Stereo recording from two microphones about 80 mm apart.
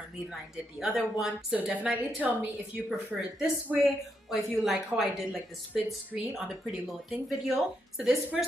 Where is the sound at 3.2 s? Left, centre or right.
Centre.